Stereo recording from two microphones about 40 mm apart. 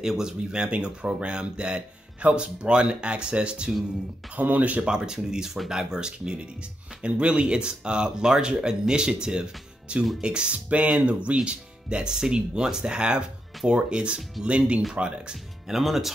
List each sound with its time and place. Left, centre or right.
0.0 s speech: centre
0.5 s speech: right
4.4 s speech: right
4.8 s speech: centre
15.7 s speech: centre